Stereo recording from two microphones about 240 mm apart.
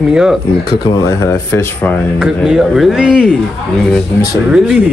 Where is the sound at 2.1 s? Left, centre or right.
Centre.